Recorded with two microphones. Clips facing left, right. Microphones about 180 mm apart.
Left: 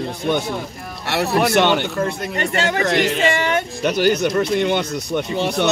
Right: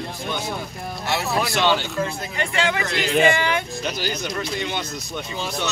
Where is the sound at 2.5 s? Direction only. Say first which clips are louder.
Left 2 dB; 45° left (ahead or behind).